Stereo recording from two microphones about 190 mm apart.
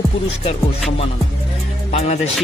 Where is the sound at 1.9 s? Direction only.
30° left (ahead or behind).